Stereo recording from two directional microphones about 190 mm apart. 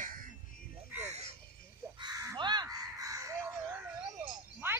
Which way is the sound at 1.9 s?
20° right (ahead or behind).